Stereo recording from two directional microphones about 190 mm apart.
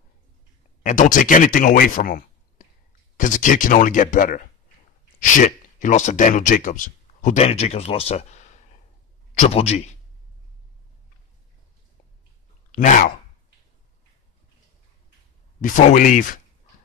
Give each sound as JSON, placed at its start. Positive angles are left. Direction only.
{"t": 0.8, "sound": "speech", "side_deg": 45}
{"t": 12.7, "sound": "speech", "side_deg": 45}
{"t": 15.6, "sound": "speech", "side_deg": 40}